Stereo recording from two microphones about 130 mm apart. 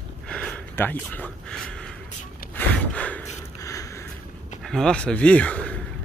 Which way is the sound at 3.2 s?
25° left (ahead or behind).